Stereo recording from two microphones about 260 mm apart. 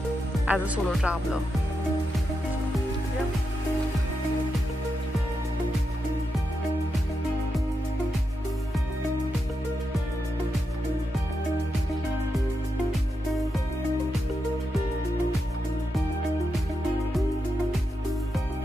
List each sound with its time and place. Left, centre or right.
0.5 s speech: centre